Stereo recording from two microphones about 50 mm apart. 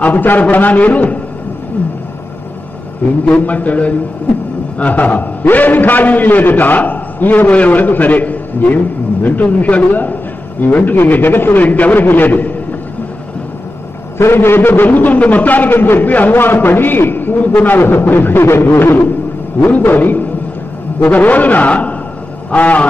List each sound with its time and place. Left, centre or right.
0.0 s a man's voice: left
1.8 s wild animals: left
3.3 s a man's voice: left
14.1 s a man's voice: left
19.7 s a man's voice: left